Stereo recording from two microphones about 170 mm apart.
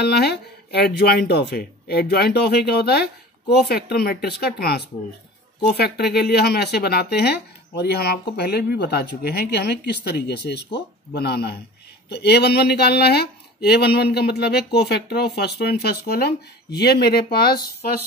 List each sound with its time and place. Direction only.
0.0 s speech: 75° left (ahead or behind)